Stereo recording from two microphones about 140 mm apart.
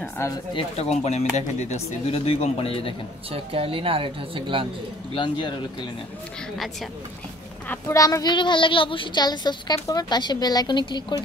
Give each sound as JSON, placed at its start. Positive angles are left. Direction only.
{"t": 0.6, "sound": "speech", "side_deg": 45}
{"t": 3.3, "sound": "speech", "side_deg": -40}
{"t": 5.1, "sound": "a woman's voice", "side_deg": 35}
{"t": 7.9, "sound": "a woman's voice", "side_deg": 25}